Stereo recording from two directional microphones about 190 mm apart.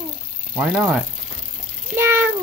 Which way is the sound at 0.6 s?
5° right (ahead or behind).